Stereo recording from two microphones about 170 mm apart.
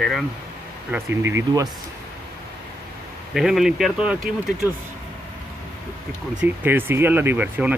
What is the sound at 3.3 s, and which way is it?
Speech, centre (ahead or behind).